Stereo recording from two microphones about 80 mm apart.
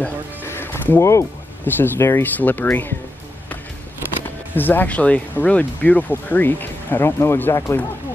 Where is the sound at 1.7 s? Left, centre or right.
Left.